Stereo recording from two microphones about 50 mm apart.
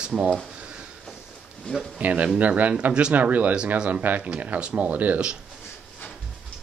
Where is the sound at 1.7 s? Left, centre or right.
Left.